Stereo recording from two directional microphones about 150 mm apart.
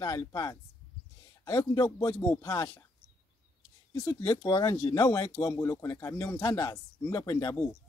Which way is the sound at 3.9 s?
25° left (ahead or behind).